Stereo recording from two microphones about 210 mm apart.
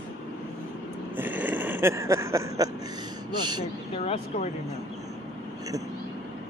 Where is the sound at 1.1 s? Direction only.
10° right (ahead or behind).